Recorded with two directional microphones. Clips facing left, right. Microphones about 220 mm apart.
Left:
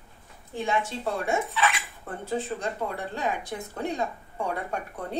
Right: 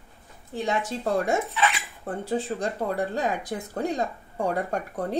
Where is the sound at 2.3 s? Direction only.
30° right (ahead or behind).